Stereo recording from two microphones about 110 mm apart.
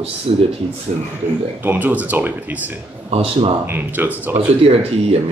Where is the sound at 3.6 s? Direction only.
15° right (ahead or behind).